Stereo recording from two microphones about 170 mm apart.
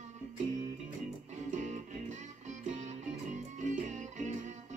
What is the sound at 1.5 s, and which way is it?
Music, 45° right (ahead or behind).